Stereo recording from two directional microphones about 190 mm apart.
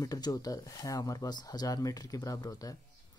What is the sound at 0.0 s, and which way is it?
Speech, 20° left (ahead or behind).